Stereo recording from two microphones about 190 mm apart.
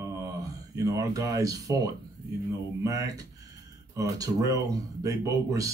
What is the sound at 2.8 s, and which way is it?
Speech, 15° right (ahead or behind).